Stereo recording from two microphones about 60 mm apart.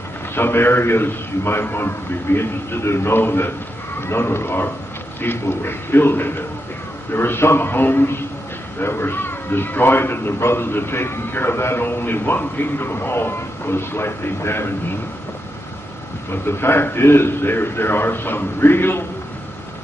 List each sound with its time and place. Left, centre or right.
0.3 s speech: left
16.4 s speech: left